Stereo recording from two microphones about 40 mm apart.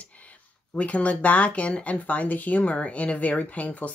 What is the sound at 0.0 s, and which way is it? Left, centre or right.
Speech, left.